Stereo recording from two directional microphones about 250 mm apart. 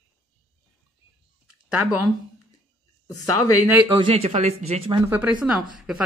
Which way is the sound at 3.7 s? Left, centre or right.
Centre.